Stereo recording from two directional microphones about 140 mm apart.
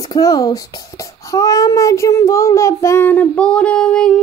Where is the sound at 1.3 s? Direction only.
25° left (ahead or behind).